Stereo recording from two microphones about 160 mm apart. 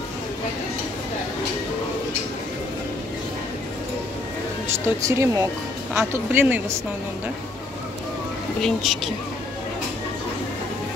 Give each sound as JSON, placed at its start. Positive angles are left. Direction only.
{"t": 5.0, "sound": "speech", "side_deg": -20}
{"t": 8.6, "sound": "speech", "side_deg": 0}